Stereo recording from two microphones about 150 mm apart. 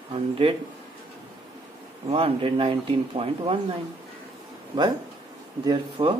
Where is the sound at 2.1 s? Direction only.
40° right (ahead or behind).